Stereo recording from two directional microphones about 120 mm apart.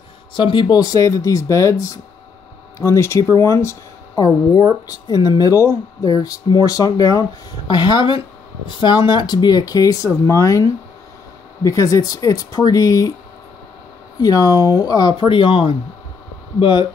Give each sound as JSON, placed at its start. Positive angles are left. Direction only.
{"t": 0.3, "sound": "speech", "side_deg": 45}
{"t": 14.2, "sound": "speech", "side_deg": 30}